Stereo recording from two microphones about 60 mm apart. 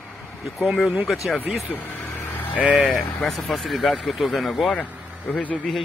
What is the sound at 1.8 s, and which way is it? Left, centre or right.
Vehicle, left.